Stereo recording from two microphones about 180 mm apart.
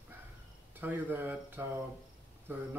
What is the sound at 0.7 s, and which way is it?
Speech, 10° right (ahead or behind).